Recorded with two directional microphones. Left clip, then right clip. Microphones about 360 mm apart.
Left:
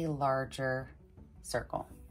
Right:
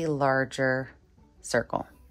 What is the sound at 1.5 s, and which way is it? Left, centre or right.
Speech, right.